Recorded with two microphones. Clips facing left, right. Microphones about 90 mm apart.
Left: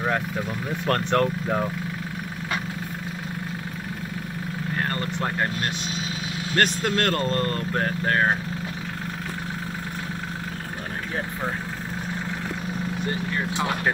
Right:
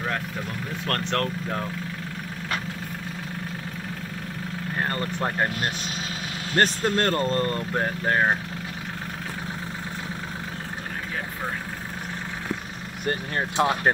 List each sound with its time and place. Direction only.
0.8 s speech: 10° left (ahead or behind)
4.7 s vehicle: 20° right (ahead or behind)
6.5 s speech: 25° right (ahead or behind)
13.0 s speech: 55° right (ahead or behind)